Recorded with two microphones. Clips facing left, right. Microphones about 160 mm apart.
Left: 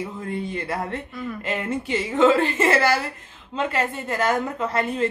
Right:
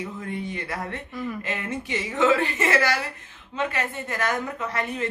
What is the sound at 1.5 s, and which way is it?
Speech, 30° left (ahead or behind).